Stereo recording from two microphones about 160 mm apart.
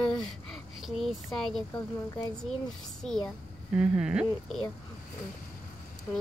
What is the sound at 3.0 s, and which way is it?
Speech, 5° left (ahead or behind).